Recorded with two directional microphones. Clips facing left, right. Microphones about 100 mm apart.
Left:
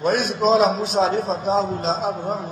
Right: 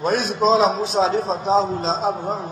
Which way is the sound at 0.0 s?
40° right (ahead or behind).